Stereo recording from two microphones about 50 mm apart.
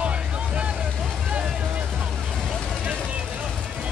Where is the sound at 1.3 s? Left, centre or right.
Centre.